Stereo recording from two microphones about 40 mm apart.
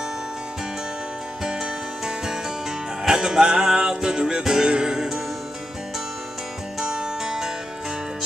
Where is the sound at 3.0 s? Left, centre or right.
Centre.